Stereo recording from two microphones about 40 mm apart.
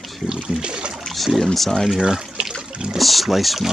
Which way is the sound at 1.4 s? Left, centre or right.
Centre.